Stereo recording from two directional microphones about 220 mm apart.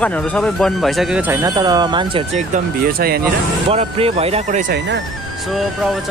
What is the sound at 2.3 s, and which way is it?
Speech, 40° right (ahead or behind).